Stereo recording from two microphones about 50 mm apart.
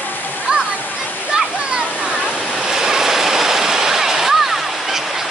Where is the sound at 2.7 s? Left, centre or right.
Centre.